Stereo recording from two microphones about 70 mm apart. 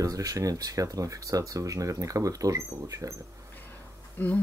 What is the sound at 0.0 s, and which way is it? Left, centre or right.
Speech, right.